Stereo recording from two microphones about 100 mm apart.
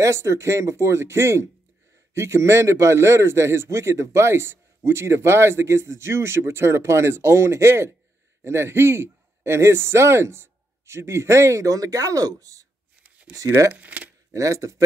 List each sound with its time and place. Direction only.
0.0 s a man's voice: 30° right (ahead or behind)
13.7 s speech: 15° right (ahead or behind)
14.3 s speech: 35° right (ahead or behind)